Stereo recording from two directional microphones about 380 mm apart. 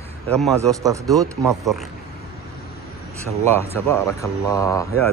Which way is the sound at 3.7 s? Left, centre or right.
Centre.